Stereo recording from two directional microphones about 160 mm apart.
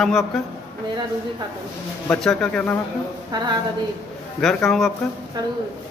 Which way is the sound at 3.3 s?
25° right (ahead or behind).